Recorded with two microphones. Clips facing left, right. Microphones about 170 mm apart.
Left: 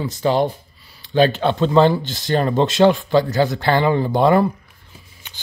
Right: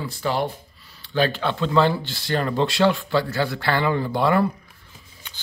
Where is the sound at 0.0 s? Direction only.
20° left (ahead or behind).